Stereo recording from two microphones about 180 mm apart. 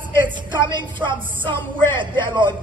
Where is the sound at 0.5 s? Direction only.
25° right (ahead or behind).